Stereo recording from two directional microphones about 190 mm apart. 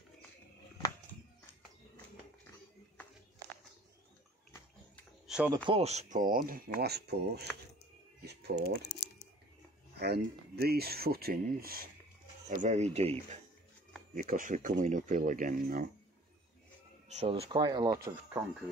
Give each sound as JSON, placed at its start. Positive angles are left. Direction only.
{"t": 5.2, "sound": "a sound", "side_deg": -5}
{"t": 5.7, "sound": "speech", "side_deg": -35}
{"t": 8.2, "sound": "typing", "side_deg": -60}
{"t": 9.9, "sound": "speech", "side_deg": -60}
{"t": 12.4, "sound": "speech", "side_deg": -40}
{"t": 14.1, "sound": "speech", "side_deg": -45}
{"t": 17.2, "sound": "speech", "side_deg": -30}